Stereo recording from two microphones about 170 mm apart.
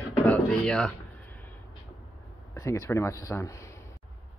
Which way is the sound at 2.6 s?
20° left (ahead or behind).